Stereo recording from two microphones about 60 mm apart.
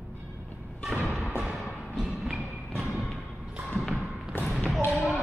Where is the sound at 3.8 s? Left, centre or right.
Centre.